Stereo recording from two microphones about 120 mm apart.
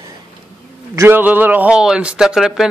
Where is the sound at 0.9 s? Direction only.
15° right (ahead or behind).